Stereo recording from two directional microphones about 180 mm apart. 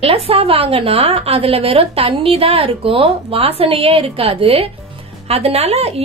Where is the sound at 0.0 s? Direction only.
30° right (ahead or behind).